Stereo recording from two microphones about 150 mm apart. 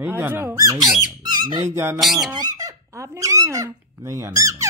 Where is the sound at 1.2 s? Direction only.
25° right (ahead or behind).